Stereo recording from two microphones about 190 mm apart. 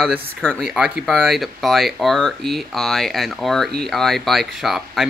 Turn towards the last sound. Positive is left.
turn(degrees=0)  # may be behind; listen again after turning